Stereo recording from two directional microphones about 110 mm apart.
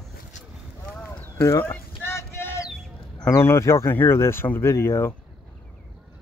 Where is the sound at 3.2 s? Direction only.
25° left (ahead or behind).